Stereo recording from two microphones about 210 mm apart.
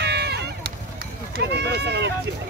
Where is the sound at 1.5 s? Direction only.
55° right (ahead or behind).